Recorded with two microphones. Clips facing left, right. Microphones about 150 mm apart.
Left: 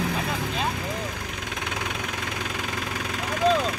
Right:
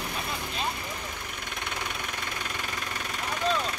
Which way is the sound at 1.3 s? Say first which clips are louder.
Left 4 dB; 90° left.